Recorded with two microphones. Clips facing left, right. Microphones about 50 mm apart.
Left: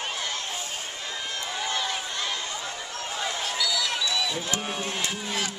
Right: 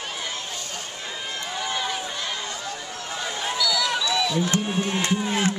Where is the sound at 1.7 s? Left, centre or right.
Centre.